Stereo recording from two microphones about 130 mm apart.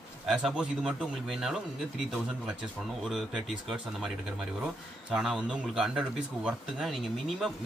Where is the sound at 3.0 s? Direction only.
Centre (ahead or behind).